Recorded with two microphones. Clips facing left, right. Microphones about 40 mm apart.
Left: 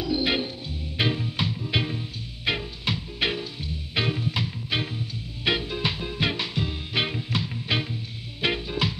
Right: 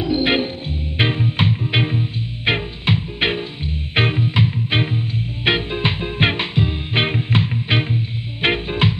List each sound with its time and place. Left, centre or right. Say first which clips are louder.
0.0 s music: right 7 dB; right